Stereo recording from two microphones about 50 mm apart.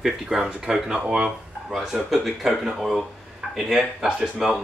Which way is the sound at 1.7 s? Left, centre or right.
Centre.